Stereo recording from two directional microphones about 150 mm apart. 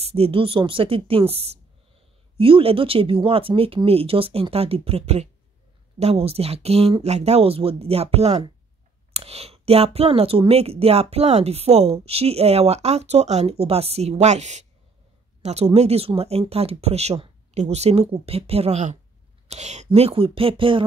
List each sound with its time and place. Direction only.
0.0 s speech: 40° right (ahead or behind)